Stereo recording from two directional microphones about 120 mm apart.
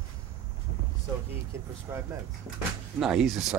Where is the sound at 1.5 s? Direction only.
25° right (ahead or behind).